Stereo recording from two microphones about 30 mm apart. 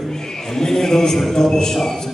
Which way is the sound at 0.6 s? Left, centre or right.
Centre.